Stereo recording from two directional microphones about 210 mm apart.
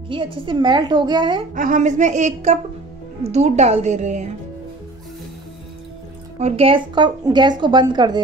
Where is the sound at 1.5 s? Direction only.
40° right (ahead or behind).